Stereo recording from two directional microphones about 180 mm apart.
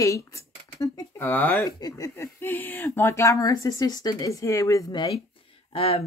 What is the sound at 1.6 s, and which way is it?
Speech, 20° left (ahead or behind).